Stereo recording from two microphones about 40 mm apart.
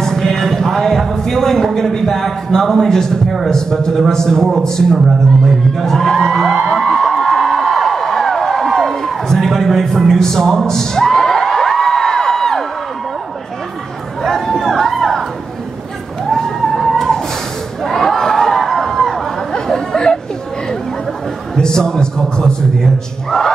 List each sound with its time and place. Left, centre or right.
0.0 s a sound: centre
1.8 s a man's voice: centre
4.9 s speech: centre
6.6 s a sound: centre
14.3 s chatter: centre
16.3 s a sound: centre
17.8 s crowd: centre
19.5 s chatter: centre
21.5 s a man's voice: centre